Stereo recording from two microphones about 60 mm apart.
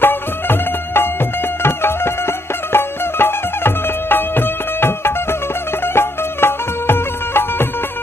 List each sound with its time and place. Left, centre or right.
0.0 s music: left